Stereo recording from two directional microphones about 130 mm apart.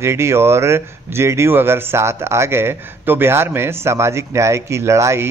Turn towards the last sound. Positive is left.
turn(degrees=-20)  # may be behind; listen again after turning